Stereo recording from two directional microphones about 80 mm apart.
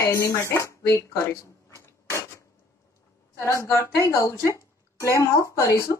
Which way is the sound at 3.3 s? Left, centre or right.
Left.